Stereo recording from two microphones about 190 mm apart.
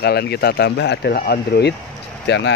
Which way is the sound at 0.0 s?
60° left (ahead or behind).